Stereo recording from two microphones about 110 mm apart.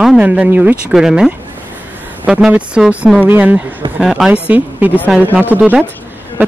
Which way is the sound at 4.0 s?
5° right (ahead or behind).